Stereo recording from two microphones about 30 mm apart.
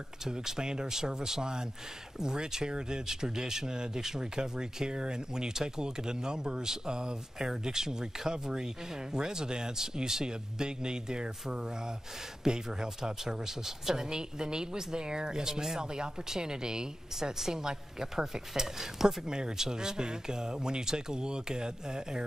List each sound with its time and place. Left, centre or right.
0.3 s a woman's voice: right